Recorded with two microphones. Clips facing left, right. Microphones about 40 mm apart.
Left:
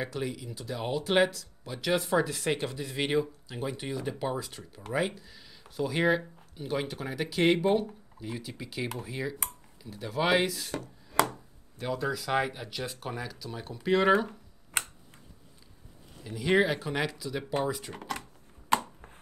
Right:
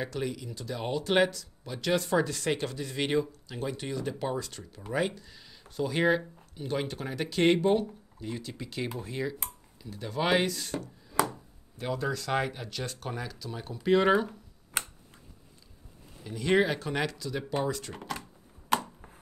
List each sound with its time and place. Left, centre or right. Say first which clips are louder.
0.0 s speech: right 1 dB; centre
16.3 s speech: even; centre
17.9 s a sound: left 1 dB; left